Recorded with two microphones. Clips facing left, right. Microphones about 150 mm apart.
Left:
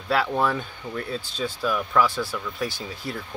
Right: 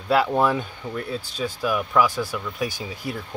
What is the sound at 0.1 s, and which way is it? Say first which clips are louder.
Speech: right 3 dB; 10° right (ahead or behind).